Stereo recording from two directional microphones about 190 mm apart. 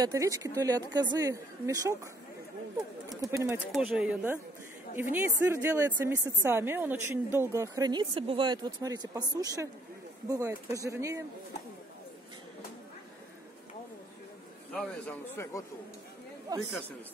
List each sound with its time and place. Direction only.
0.0 s speech: 15° right (ahead or behind)
3.1 s speech: 20° right (ahead or behind)
3.7 s speech: 5° right (ahead or behind)
14.7 s a man's voice: 5° left (ahead or behind)
16.5 s speech: 20° right (ahead or behind)